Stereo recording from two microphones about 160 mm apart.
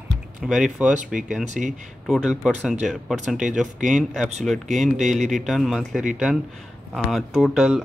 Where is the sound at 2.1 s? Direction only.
Centre (ahead or behind).